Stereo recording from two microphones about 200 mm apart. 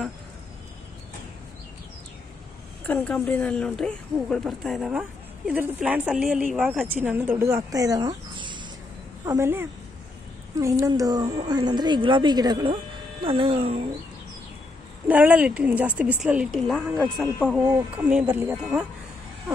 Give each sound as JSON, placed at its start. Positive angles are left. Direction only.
{"t": 2.9, "sound": "a woman's voice", "side_deg": 5}
{"t": 15.0, "sound": "speech", "side_deg": -5}
{"t": 17.6, "sound": "speech", "side_deg": -10}